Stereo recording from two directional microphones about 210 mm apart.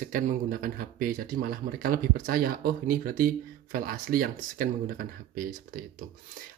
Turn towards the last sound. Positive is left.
turn(degrees=-40)  # may be behind; listen again after turning